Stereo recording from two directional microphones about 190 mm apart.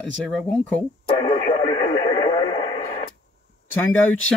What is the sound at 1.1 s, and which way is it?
Radio, 30° left (ahead or behind).